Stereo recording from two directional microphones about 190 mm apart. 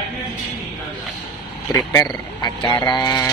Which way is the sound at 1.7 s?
15° left (ahead or behind).